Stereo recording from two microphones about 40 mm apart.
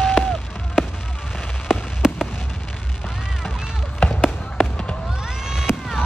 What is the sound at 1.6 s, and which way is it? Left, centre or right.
Fireworks, centre.